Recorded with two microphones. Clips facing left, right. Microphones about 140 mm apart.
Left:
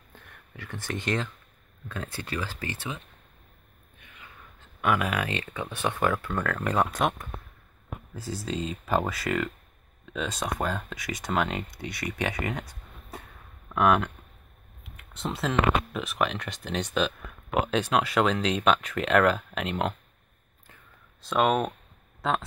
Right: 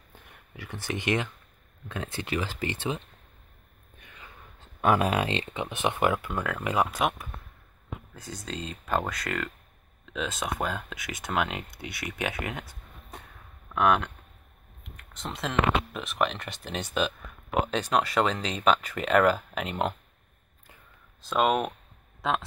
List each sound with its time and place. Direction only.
0.1 s a sound: 10° right (ahead or behind)
2.1 s speech: 15° right (ahead or behind)
4.0 s speech: 35° right (ahead or behind); by 20.0 s centre (ahead or behind)
21.2 s speech: centre (ahead or behind)